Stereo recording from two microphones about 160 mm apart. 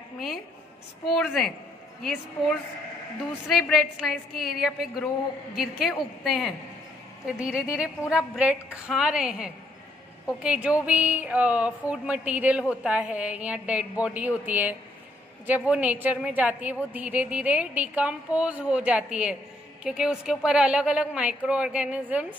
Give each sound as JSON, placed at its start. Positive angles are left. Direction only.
{"t": 1.0, "sound": "a woman's voice", "side_deg": 0}
{"t": 3.4, "sound": "a woman's voice", "side_deg": 0}